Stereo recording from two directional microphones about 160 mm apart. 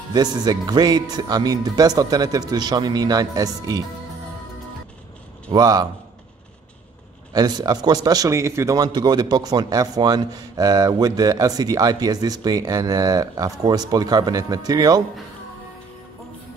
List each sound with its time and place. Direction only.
0.1 s a man's voice: 25° right (ahead or behind)
5.5 s a man's voice: 25° right (ahead or behind)
7.3 s a man's voice: 25° right (ahead or behind)